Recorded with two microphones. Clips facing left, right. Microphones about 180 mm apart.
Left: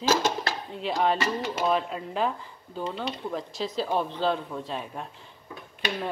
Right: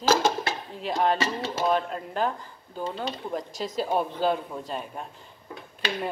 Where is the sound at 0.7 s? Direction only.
Centre (ahead or behind).